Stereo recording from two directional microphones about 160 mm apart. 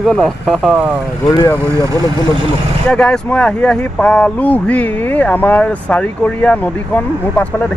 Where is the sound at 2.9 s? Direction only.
5° left (ahead or behind).